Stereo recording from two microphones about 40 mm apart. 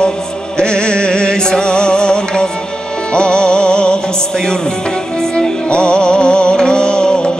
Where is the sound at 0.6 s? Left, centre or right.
Left.